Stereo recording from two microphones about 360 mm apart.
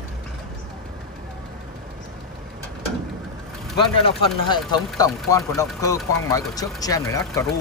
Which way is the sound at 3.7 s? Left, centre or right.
Centre.